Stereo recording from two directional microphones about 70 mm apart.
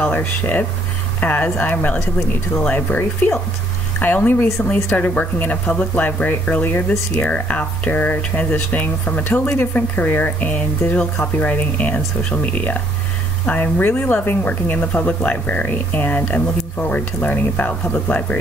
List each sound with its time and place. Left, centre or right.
0.0 s speech: left